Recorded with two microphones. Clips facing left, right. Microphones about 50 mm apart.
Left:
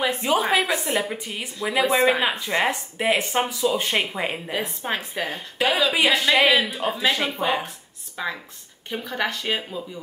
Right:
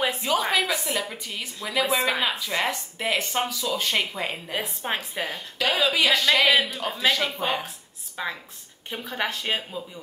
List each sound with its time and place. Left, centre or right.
0.2 s a woman's voice: left
4.8 s a woman's voice: centre
5.3 s speech: left
8.2 s a woman's voice: centre